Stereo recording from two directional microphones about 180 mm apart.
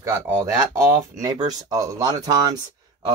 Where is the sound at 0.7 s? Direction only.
20° right (ahead or behind).